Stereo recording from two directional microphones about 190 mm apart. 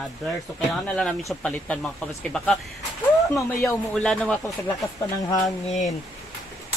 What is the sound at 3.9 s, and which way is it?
Speech, 5° left (ahead or behind).